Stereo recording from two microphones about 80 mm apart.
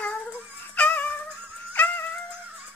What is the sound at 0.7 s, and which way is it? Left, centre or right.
Music, centre.